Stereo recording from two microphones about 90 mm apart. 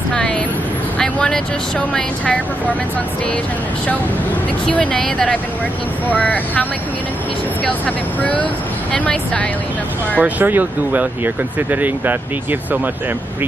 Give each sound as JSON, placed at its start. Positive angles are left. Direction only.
{"t": 0.1, "sound": "a sound", "side_deg": 10}
{"t": 0.9, "sound": "speech", "side_deg": 10}
{"t": 4.6, "sound": "speech", "side_deg": 5}
{"t": 10.1, "sound": "speech", "side_deg": -20}